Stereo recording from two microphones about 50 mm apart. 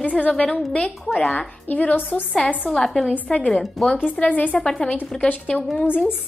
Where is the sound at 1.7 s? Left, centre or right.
Left.